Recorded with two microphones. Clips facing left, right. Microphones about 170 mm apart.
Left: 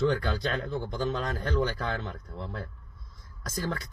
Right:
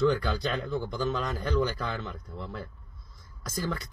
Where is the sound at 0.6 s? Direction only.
25° left (ahead or behind).